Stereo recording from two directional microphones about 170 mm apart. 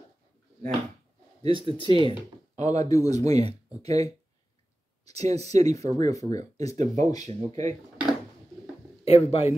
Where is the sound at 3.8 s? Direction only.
40° right (ahead or behind).